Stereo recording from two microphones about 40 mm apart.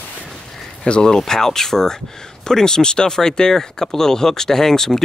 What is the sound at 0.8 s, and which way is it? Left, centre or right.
Speech, left.